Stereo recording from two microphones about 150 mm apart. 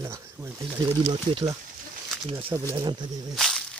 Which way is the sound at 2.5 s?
20° right (ahead or behind).